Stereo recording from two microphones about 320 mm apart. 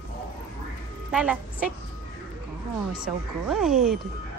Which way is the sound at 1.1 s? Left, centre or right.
Centre.